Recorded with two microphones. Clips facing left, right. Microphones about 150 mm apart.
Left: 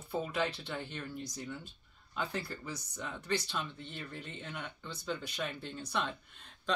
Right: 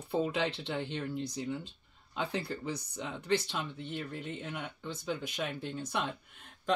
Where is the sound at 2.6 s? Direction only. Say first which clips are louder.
Right 6 dB; 60° right (ahead or behind).